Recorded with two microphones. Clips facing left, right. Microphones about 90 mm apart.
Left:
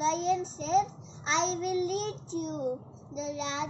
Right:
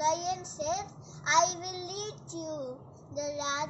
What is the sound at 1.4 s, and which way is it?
Child singing, 15° right (ahead or behind).